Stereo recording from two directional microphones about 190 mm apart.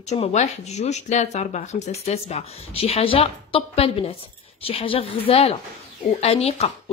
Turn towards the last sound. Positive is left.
turn(degrees=35)  # may be behind; listen again after turning